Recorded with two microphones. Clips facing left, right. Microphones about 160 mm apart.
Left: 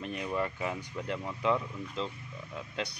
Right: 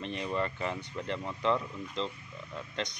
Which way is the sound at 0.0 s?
5° left (ahead or behind).